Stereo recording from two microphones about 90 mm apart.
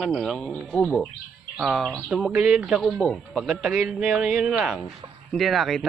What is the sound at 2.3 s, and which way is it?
A man's voice, 10° right (ahead or behind).